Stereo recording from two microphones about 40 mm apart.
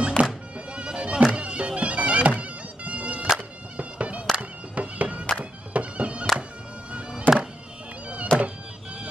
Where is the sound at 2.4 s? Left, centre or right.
Right.